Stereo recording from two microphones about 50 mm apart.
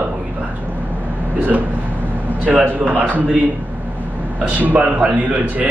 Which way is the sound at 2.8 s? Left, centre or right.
Right.